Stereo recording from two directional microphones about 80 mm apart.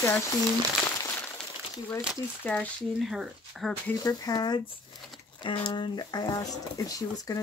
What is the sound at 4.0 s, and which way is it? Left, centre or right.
Speech, left.